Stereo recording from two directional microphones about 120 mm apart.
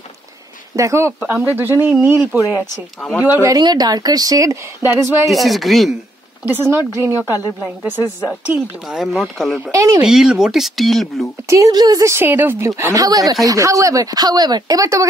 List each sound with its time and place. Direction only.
0.7 s a woman's voice: 25° right (ahead or behind)
1.2 s speech: 10° right (ahead or behind)
3.0 s speech: centre (ahead or behind)
3.4 s a woman's voice: 35° right (ahead or behind)
5.3 s speech: centre (ahead or behind)
6.4 s speech: 20° right (ahead or behind)
9.6 s a woman's voice: 25° right (ahead or behind)
10.0 s speech: 5° right (ahead or behind)
11.4 s a woman's voice: 25° right (ahead or behind)